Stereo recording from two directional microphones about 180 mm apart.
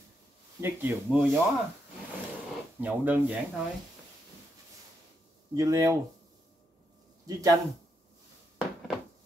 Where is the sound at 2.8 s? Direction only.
10° right (ahead or behind).